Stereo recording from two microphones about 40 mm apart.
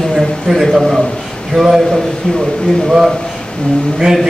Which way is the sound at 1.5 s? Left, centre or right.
Centre.